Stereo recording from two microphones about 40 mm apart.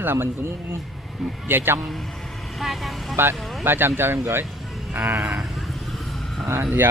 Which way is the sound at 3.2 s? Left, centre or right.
Right.